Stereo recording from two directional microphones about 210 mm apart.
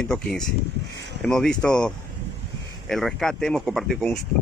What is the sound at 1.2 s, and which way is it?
Speech, 5° left (ahead or behind).